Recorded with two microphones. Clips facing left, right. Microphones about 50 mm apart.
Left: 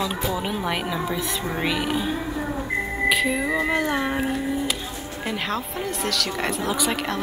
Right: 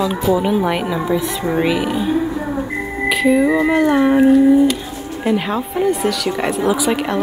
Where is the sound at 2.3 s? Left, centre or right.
Centre.